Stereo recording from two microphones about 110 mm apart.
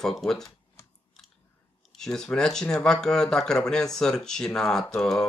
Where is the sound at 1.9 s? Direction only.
5° left (ahead or behind).